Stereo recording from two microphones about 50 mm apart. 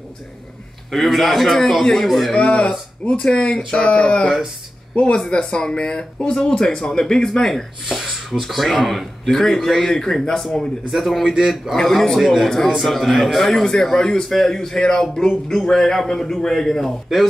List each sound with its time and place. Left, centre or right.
0.9 s a man's voice: centre
2.3 s speech: left
7.9 s a man's voice: centre